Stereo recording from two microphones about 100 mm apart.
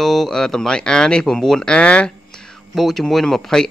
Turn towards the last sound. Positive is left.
turn(degrees=5)  # may be behind; listen again after turning